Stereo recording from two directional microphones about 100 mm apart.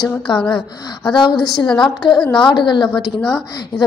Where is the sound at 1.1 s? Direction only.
50° left (ahead or behind).